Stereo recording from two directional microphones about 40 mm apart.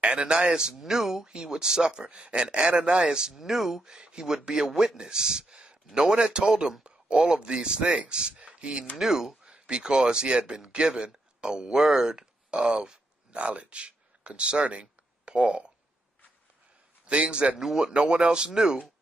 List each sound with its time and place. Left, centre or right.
0.0 s speech: right
0.8 s speech: centre
1.2 s speech: right; by 3.8 s centre
3.8 s speech: right
4.6 s speech: centre
4.9 s speech: centre
6.8 s speech: right
8.9 s speech: centre
9.4 s speech: right
13.4 s speech: right
17.0 s speech: right
17.6 s speech: centre